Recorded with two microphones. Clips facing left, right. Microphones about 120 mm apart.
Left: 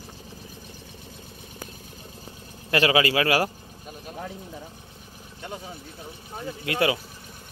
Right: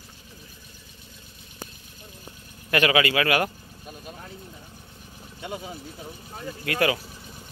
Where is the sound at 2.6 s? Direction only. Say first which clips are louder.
Even; 30° left (ahead or behind).